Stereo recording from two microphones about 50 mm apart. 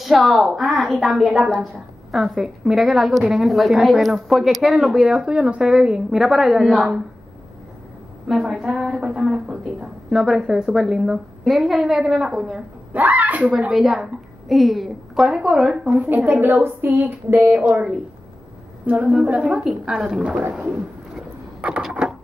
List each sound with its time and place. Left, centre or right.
0.0 s a woman's voice: centre
5.4 s a woman's voice: right
5.7 s a woman's voice: centre
8.3 s a woman's voice: centre
9.5 s a woman's voice: centre
12.9 s speech: right
13.7 s a woman's voice: centre
15.8 s speech: right
16.3 s a woman's voice: right
16.6 s speech: right
18.9 s a woman's voice: right
19.9 s a woman's voice: centre
20.6 s a sound: centre
21.5 s a sound: right